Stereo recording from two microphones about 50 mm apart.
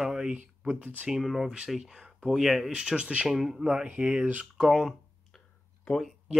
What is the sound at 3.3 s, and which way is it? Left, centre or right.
Speech, centre.